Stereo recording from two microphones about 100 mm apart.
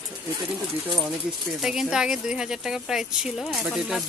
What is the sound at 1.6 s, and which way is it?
Speech, 5° right (ahead or behind).